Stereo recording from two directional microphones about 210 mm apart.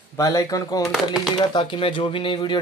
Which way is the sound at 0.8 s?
Centre (ahead or behind).